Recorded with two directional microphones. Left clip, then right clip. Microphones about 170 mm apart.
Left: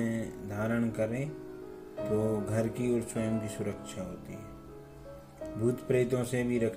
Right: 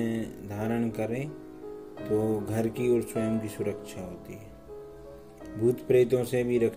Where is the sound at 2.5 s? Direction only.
25° right (ahead or behind).